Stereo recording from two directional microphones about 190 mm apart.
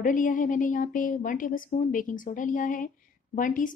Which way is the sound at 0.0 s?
45° left (ahead or behind).